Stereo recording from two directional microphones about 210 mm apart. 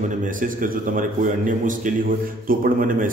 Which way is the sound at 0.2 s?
40° right (ahead or behind).